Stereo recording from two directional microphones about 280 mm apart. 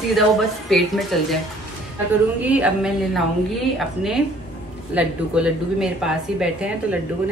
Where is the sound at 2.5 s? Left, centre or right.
Centre.